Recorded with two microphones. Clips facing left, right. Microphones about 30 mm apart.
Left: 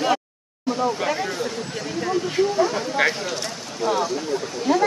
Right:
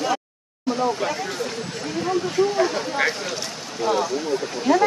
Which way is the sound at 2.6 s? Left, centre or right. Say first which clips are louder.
Left 2 dB; right.